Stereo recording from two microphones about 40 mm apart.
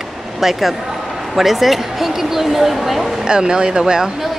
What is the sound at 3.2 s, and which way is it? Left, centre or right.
Speech, centre.